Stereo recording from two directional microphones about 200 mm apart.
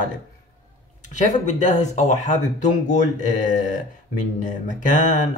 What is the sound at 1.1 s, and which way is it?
Speech, 35° left (ahead or behind).